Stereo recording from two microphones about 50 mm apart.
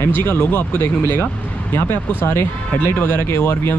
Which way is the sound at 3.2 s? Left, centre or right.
Left.